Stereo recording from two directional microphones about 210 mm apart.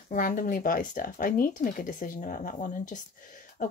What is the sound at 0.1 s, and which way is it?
A woman's voice, 40° left (ahead or behind).